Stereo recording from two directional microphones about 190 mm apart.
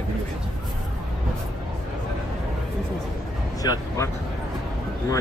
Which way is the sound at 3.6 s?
20° left (ahead or behind).